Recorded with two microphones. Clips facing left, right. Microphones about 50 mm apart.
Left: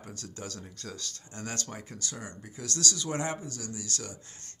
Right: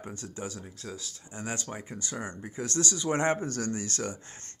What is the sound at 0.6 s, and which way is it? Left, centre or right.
Speech, centre.